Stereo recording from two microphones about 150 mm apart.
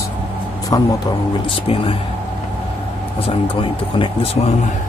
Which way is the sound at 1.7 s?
40° left (ahead or behind).